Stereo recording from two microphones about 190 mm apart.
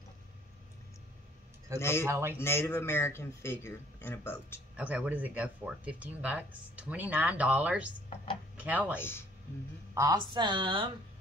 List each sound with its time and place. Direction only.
1.8 s speech: 15° left (ahead or behind)
2.0 s speech: 15° right (ahead or behind)
2.4 s speech: 15° left (ahead or behind)
4.7 s speech: 5° right (ahead or behind)
9.9 s a woman's voice: 20° right (ahead or behind)